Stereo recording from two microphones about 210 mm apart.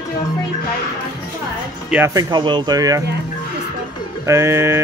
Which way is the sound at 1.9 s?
15° right (ahead or behind).